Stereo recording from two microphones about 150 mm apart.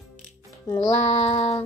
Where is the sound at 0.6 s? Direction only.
25° left (ahead or behind).